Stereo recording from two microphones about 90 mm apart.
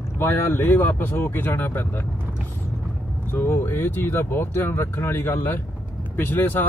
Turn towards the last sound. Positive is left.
turn(degrees=20)  # may be behind; listen again after turning